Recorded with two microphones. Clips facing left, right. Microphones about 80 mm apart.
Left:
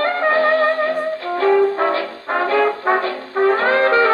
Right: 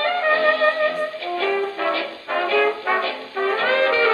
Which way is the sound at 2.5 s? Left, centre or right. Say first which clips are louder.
Left 3 dB; left.